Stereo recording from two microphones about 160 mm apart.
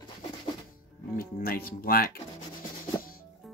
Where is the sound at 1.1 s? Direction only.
65° left (ahead or behind).